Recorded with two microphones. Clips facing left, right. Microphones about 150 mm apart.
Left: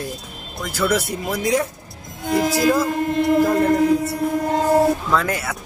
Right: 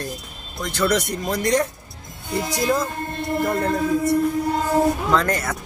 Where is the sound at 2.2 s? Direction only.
90° left.